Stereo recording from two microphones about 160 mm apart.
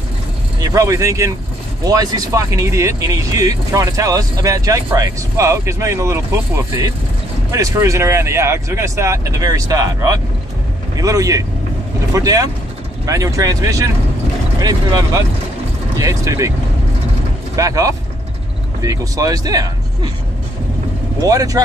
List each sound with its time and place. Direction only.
0.6 s speech: 20° right (ahead or behind)
17.6 s speech: 20° right (ahead or behind)
21.2 s speech: 20° right (ahead or behind)